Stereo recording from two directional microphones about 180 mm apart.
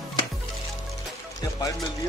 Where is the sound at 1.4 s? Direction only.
20° left (ahead or behind).